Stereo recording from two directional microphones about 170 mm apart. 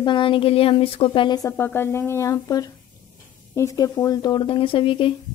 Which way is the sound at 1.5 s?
10° left (ahead or behind).